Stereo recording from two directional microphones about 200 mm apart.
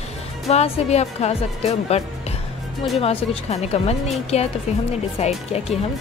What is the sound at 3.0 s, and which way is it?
Speech, 30° left (ahead or behind).